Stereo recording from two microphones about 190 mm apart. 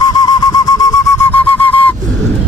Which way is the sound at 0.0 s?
20° left (ahead or behind).